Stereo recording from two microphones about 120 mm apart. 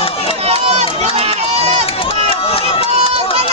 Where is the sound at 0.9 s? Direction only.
60° right (ahead or behind).